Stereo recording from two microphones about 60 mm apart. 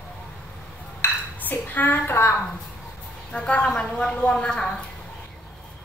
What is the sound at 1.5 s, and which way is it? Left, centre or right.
Speech, left.